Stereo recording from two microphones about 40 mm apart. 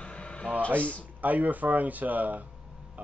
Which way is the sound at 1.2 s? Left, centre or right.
Right.